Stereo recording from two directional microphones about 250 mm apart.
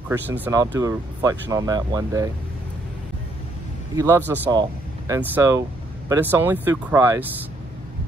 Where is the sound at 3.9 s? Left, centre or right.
Centre.